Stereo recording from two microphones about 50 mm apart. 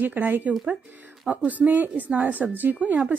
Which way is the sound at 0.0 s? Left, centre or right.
Right.